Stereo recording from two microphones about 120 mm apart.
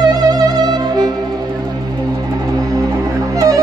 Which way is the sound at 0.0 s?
35° right (ahead or behind).